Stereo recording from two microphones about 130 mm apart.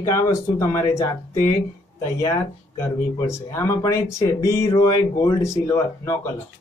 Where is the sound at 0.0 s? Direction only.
25° left (ahead or behind).